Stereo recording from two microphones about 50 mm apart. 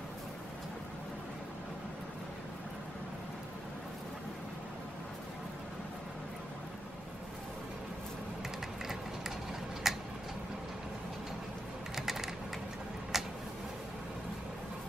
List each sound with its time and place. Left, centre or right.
9.8 s tick-tock: centre
11.9 s typewriter: centre
13.1 s a sound: centre